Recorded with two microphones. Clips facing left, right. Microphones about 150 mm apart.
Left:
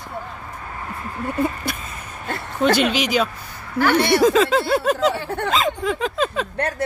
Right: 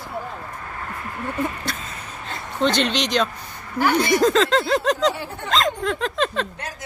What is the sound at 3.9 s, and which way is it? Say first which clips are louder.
Speech: left 2 dB; 70° left (ahead or behind).